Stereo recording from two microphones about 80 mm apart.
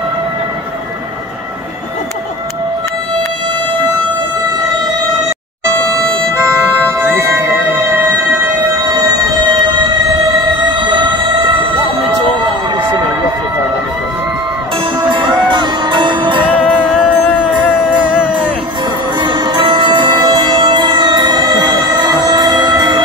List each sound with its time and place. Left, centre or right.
7.1 s music: right
10.6 s a sound: right
15.0 s music: right
19.1 s music: right